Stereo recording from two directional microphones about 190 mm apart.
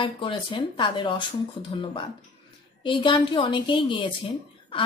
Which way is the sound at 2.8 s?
25° left (ahead or behind).